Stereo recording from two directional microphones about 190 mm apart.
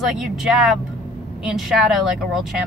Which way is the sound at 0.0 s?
Centre (ahead or behind).